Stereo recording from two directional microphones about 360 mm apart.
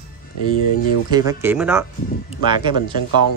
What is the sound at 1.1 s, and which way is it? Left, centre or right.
Speech, centre.